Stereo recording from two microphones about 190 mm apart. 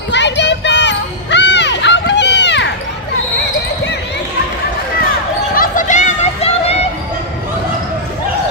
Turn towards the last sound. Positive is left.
turn(degrees=35)  # may be behind; listen again after turning